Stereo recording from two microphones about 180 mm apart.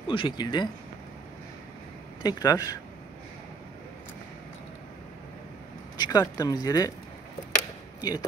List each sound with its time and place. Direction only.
0.1 s speech: 25° left (ahead or behind)
2.2 s speech: 20° left (ahead or behind)
5.9 s speech: 20° left (ahead or behind)
8.0 s speech: 20° left (ahead or behind)